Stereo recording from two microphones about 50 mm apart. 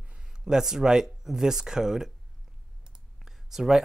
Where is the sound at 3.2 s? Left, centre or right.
Centre.